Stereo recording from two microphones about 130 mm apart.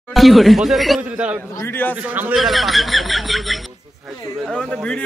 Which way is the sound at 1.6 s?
15° left (ahead or behind).